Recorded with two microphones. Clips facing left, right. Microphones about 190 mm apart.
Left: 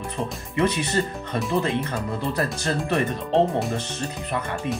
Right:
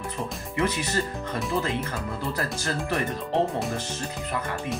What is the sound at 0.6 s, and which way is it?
Speech, 25° left (ahead or behind).